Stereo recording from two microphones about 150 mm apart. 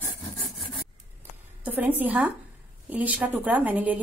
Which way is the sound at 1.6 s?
10° right (ahead or behind).